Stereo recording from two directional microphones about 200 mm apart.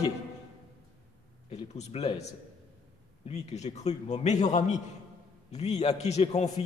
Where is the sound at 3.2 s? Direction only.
35° left (ahead or behind).